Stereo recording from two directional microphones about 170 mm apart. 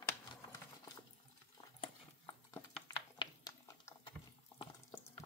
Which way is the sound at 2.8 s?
25° left (ahead or behind).